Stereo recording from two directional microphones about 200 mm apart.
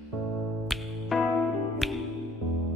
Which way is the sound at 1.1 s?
Centre (ahead or behind).